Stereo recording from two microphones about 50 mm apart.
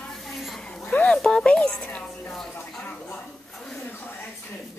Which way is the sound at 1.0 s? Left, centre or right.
Centre.